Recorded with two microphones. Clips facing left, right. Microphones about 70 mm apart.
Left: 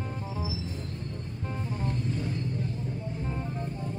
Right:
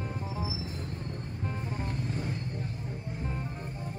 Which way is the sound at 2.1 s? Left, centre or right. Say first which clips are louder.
Left 3 dB; right.